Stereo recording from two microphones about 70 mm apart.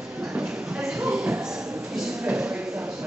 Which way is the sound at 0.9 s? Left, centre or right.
Centre.